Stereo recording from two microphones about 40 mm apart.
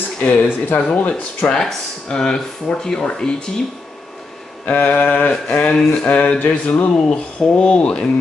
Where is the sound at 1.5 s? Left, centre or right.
Centre.